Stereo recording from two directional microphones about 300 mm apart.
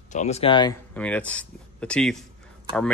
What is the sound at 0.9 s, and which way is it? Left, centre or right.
Speech, centre.